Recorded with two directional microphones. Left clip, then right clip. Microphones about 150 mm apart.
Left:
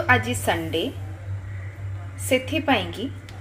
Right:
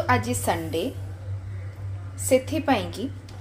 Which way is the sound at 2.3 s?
15° right (ahead or behind).